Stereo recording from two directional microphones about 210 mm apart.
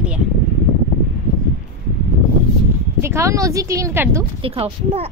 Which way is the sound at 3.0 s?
15° right (ahead or behind).